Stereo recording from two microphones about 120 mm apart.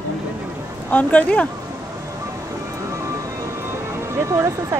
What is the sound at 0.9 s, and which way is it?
Speech, 10° left (ahead or behind).